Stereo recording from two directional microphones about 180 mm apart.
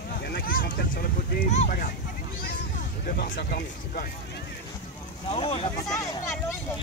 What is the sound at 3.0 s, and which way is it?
Music, 55° left (ahead or behind).